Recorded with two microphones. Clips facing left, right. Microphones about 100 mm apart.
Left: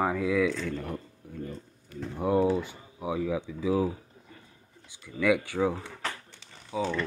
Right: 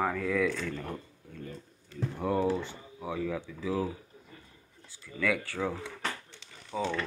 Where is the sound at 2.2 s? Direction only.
20° left (ahead or behind).